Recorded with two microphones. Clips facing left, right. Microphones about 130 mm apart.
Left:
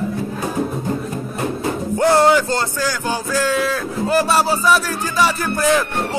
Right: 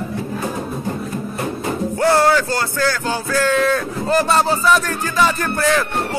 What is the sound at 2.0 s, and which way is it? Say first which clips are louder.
Speech: left 1 dB; 15° left (ahead or behind).